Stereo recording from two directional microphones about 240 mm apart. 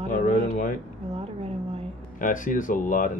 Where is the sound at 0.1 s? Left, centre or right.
Left.